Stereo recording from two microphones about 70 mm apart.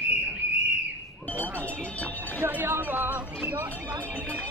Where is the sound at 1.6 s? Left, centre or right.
Centre.